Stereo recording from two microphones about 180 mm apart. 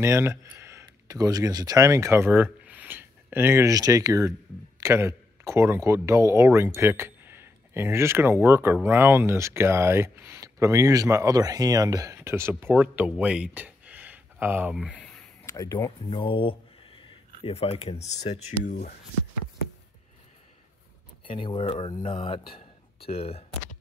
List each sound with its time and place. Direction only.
0.0 s speech: 15° right (ahead or behind)
15.0 s a sound: 5° left (ahead or behind)
15.4 s speech: 20° left (ahead or behind); by 18.9 s 45° left (ahead or behind)
21.3 s speech: 30° left (ahead or behind)